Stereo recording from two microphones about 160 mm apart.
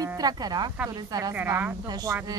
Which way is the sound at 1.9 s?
25° right (ahead or behind).